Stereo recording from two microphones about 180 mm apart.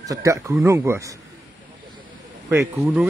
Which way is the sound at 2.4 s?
15° right (ahead or behind).